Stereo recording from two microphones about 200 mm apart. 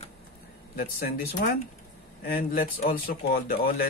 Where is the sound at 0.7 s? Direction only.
50° left (ahead or behind).